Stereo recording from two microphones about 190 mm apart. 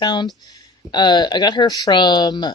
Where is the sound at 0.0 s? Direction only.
25° left (ahead or behind).